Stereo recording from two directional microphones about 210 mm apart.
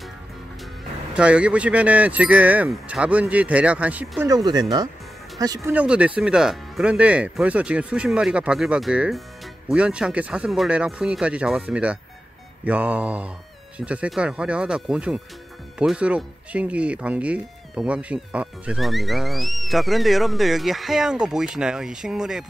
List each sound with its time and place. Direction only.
1.1 s speech: 5° right (ahead or behind)